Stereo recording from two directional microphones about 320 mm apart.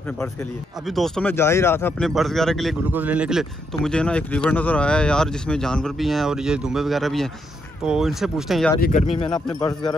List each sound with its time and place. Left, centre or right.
0.8 s speech: centre
8.8 s speech: left
9.5 s speech: centre